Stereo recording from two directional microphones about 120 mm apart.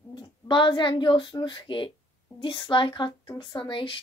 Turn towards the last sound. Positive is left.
turn(degrees=45)  # may be behind; listen again after turning